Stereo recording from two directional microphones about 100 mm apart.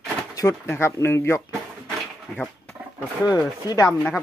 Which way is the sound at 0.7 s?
25° left (ahead or behind).